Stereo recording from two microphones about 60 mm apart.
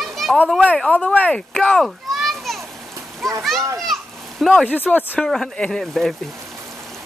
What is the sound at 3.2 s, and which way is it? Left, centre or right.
Speech, centre.